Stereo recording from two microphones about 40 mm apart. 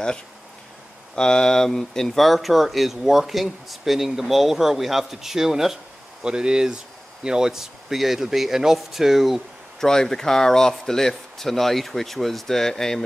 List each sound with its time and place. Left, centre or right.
1.1 s speech: centre
2.2 s speech: centre
6.2 s speech: right; by 9.4 s centre
9.8 s speech: centre